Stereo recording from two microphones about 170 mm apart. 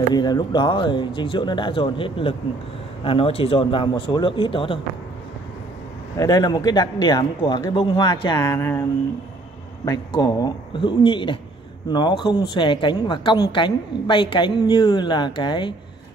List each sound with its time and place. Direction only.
0.1 s a woman's voice: 25° left (ahead or behind)
6.1 s a woman's voice: 20° left (ahead or behind)
9.8 s a woman's voice: 20° left (ahead or behind)